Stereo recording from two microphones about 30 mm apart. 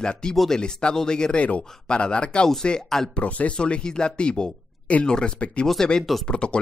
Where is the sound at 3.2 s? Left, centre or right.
Left.